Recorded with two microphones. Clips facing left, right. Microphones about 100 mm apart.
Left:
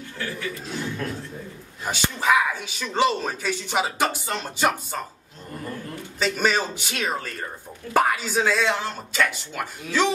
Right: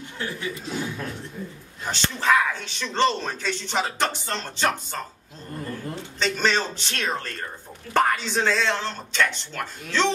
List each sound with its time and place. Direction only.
0.2 s a man's voice: 20° right (ahead or behind)
0.7 s a man's voice: 10° right (ahead or behind)
1.9 s speech: 10° left (ahead or behind)
6.1 s speech: 5° left (ahead or behind)